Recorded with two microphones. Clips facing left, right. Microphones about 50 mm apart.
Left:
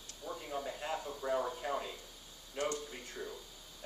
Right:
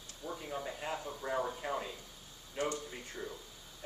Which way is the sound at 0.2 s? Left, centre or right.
Centre.